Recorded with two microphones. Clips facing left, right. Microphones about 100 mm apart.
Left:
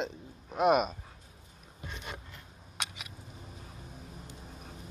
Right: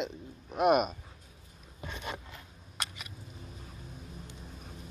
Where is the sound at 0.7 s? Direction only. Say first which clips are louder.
Even; 5° right (ahead or behind).